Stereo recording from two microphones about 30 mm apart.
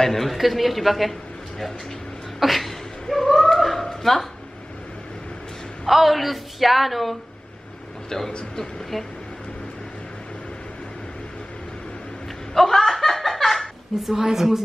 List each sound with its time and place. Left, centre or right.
0.0 s speech: centre
0.3 s a woman's voice: centre
2.4 s speech: centre
3.5 s a sound: centre
5.9 s a woman's voice: centre
8.9 s a woman's voice: centre
12.5 s laughter: centre
14.0 s a woman's voice: centre